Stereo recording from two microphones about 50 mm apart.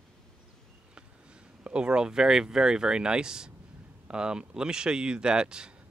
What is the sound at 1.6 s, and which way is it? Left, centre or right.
Speech, right.